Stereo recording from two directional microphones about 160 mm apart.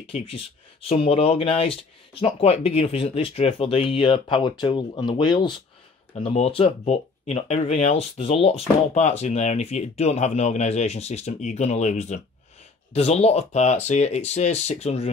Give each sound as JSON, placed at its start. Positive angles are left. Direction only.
{"t": 0.0, "sound": "speech", "side_deg": 35}